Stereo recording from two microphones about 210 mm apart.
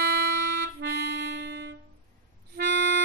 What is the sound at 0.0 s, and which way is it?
Music, 50° right (ahead or behind).